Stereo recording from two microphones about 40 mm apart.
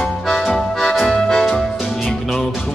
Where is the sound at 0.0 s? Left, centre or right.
Centre.